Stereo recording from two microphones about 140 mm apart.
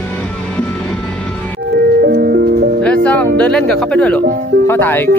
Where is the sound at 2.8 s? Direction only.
10° left (ahead or behind).